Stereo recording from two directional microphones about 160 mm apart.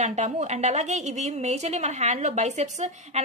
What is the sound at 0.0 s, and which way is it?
A woman's voice, 50° right (ahead or behind).